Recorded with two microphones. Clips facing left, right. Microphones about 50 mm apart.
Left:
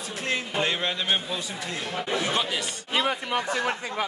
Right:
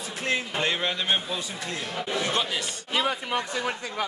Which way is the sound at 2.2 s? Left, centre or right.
Centre.